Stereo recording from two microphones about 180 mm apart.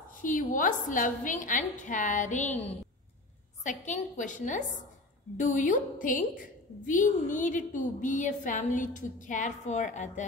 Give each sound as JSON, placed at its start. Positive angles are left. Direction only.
{"t": 0.1, "sound": "a woman's voice", "side_deg": 45}